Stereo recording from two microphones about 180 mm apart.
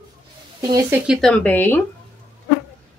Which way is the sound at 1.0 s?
Centre (ahead or behind).